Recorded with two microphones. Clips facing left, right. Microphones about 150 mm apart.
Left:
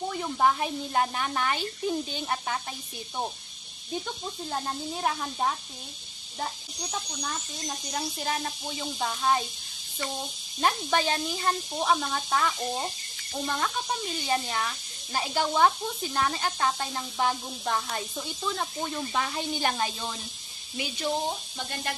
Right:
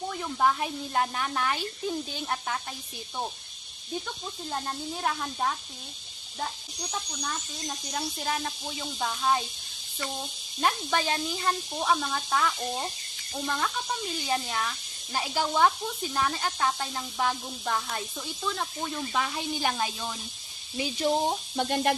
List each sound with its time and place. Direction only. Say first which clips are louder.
0.2 s speech: left 1 dB; 5° left (ahead or behind)
4.5 s speech: even; 10° left (ahead or behind)
6.9 s speech: even; 5° left (ahead or behind)
10.6 s speech: left 1 dB; centre (ahead or behind)
20.7 s speech: right 3 dB; 30° right (ahead or behind)
21.5 s speech: right 9 dB; 65° right (ahead or behind)